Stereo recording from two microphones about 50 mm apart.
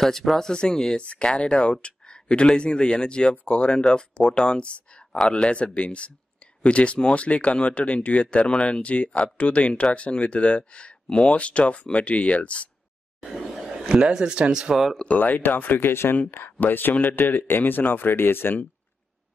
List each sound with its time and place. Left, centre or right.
0.0 s speech: centre; by 12.6 s left
13.2 s speech: centre
15.0 s speech: left